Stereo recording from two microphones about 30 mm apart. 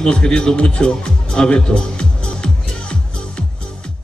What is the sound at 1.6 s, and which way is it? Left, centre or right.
Music, left.